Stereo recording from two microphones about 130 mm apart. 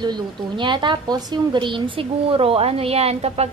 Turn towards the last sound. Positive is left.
turn(degrees=-50)  # may be behind; listen again after turning